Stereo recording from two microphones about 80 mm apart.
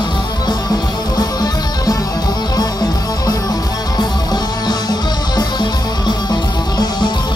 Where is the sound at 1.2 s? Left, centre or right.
Left.